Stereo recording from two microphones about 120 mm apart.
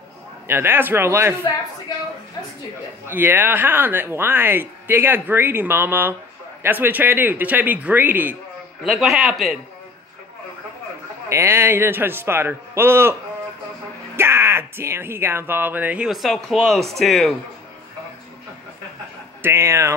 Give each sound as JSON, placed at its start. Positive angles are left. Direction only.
{"t": 0.5, "sound": "speech", "side_deg": -20}
{"t": 3.1, "sound": "speech", "side_deg": -15}
{"t": 8.8, "sound": "a man's voice", "side_deg": 0}
{"t": 11.2, "sound": "speech", "side_deg": -20}
{"t": 14.1, "sound": "speech", "side_deg": -20}
{"t": 16.1, "sound": "a man's voice", "side_deg": 0}
{"t": 19.4, "sound": "speech", "side_deg": -20}